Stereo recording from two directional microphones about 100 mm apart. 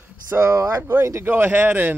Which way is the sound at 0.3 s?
30° right (ahead or behind).